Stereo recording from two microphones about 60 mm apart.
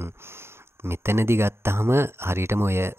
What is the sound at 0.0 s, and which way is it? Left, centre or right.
Speech, right.